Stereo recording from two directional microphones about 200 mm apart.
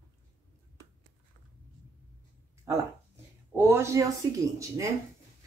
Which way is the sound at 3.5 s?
10° right (ahead or behind).